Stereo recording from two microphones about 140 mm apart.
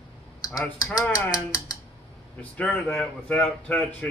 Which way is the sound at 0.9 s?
30° left (ahead or behind).